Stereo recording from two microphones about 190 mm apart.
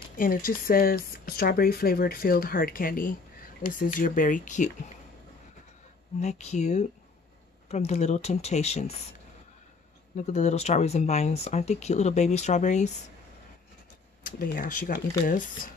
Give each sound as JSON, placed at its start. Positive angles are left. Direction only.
{"t": 0.2, "sound": "speech", "side_deg": 50}
{"t": 6.2, "sound": "speech", "side_deg": 35}
{"t": 10.1, "sound": "speech", "side_deg": 35}
{"t": 14.2, "sound": "speech", "side_deg": 45}